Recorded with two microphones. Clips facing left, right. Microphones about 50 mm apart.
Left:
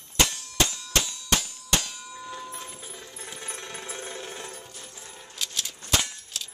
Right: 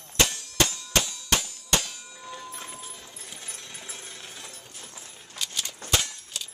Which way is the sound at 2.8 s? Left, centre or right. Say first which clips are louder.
Left 1 dB; centre.